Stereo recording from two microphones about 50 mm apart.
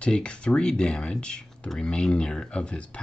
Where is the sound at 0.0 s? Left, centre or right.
Centre.